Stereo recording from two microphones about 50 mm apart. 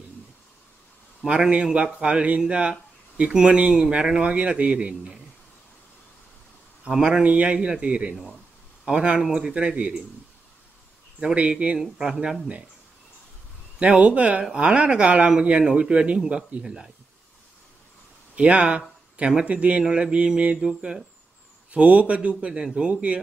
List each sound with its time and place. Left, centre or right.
1.2 s a man's voice: centre
6.9 s a man's voice: centre
11.1 s a man's voice: right
11.8 s speech: centre
13.8 s a man's voice: right
18.3 s a man's voice: right